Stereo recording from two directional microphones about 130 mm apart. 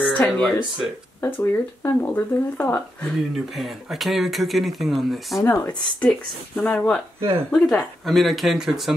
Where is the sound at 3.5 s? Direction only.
Centre (ahead or behind).